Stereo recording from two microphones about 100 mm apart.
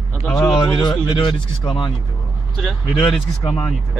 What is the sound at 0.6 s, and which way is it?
Speech, 50° left (ahead or behind).